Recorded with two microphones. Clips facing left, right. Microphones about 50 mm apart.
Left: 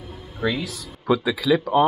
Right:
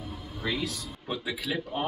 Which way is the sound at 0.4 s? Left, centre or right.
Left.